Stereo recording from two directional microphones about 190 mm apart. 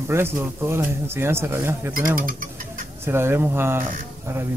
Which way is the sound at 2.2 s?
45° right (ahead or behind).